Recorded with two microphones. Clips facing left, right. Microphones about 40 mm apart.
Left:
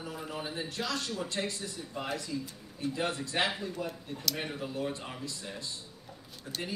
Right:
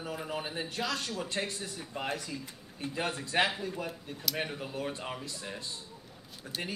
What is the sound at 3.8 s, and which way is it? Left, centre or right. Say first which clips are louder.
Speech: left 1 dB; centre.